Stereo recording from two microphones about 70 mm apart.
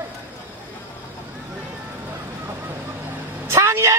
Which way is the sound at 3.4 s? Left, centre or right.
Right.